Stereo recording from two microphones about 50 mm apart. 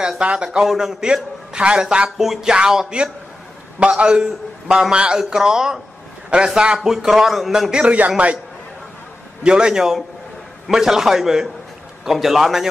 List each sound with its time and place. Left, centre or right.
0.2 s a man's voice: centre
2.0 s a man's voice: centre
3.9 s a man's voice: centre
6.8 s a man's voice: centre
7.7 s a man's voice: right
9.4 s a man's voice: centre